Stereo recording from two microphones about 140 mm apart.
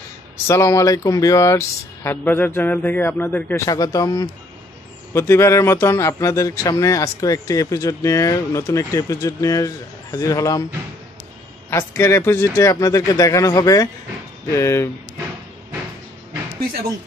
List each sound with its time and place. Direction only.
0.5 s speech: 20° left (ahead or behind)
3.6 s speech: 25° left (ahead or behind)
11.7 s speech: 20° left (ahead or behind)